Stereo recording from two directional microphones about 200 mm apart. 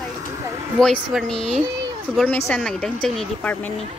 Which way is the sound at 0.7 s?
Centre (ahead or behind).